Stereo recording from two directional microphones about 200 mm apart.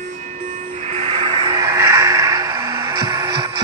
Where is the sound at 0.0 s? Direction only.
35° right (ahead or behind).